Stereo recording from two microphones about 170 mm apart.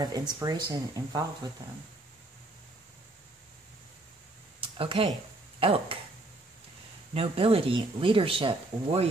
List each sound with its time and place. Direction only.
0.3 s speech: 25° right (ahead or behind)
4.6 s a sound: 30° right (ahead or behind)
5.6 s speech: 35° right (ahead or behind)
7.2 s speech: 35° right (ahead or behind)